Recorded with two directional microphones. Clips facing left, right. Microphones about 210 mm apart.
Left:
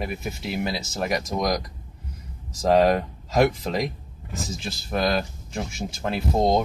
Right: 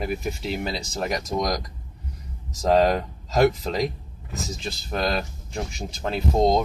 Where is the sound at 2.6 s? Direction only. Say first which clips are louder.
Left 1 dB; centre (ahead or behind).